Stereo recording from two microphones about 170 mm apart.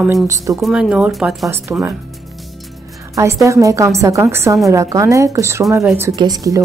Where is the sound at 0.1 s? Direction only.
20° right (ahead or behind).